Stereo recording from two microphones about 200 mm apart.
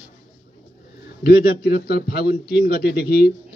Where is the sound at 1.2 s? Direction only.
50° left (ahead or behind).